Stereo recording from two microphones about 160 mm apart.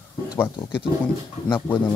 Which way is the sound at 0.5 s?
30° left (ahead or behind).